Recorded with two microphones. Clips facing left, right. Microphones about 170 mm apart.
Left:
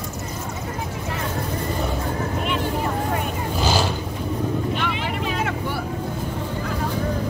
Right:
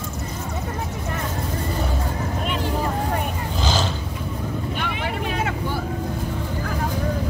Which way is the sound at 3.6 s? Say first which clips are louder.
Left 2 dB; 10° left (ahead or behind).